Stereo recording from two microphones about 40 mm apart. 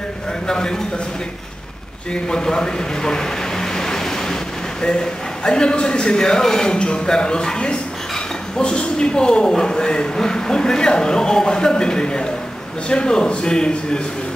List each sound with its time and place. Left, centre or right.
0.5 s a man's voice: centre
2.2 s vehicle: centre
4.8 s a man's voice: left